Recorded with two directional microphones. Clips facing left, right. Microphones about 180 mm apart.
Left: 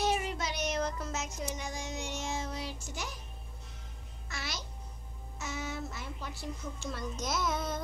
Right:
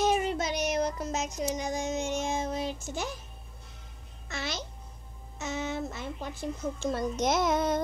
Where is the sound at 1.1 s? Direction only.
15° right (ahead or behind).